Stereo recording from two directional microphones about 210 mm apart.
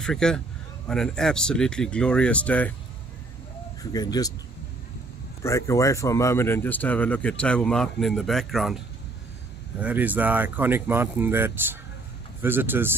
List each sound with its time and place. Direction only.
0.0 s speech: 5° left (ahead or behind)
3.9 s speech: 20° left (ahead or behind)
5.4 s speech: 15° left (ahead or behind)
9.8 s speech: 5° right (ahead or behind)